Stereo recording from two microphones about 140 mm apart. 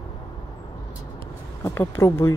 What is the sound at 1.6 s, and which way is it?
Speech, 20° left (ahead or behind).